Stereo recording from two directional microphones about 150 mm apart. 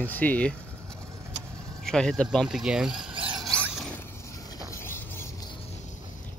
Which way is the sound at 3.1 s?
35° right (ahead or behind).